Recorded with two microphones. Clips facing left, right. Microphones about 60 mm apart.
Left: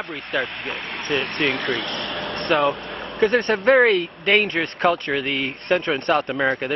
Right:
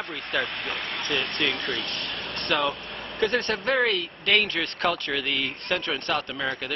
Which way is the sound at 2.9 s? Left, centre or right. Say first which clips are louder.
Left 5 dB; left.